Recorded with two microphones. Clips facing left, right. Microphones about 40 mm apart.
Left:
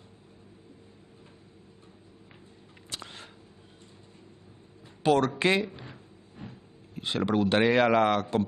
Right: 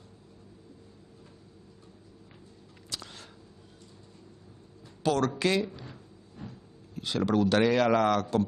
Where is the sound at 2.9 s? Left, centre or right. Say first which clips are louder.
Left 1 dB; left.